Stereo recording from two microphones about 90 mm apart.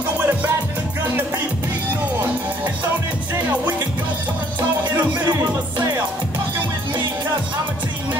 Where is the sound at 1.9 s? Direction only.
20° right (ahead or behind).